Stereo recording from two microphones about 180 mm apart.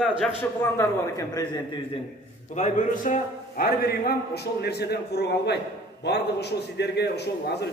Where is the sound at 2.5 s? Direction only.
45° left (ahead or behind); by 7.6 s 65° left (ahead or behind).